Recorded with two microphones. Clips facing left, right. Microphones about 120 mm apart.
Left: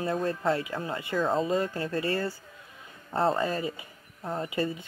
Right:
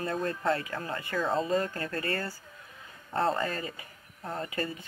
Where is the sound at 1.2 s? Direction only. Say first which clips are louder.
Left 2 dB; centre (ahead or behind).